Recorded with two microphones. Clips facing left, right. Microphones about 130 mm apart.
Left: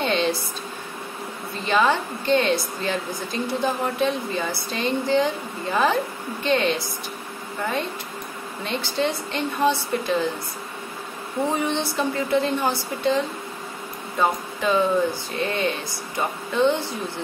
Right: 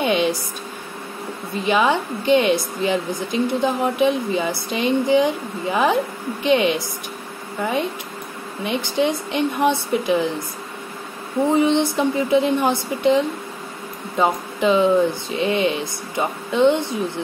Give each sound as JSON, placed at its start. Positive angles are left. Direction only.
{"t": 0.0, "sound": "a sound", "side_deg": -15}
{"t": 1.5, "sound": "a woman's voice", "side_deg": -15}
{"t": 11.4, "sound": "a woman's voice", "side_deg": -20}